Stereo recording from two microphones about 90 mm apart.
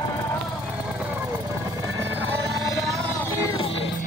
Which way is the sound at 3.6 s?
90° left.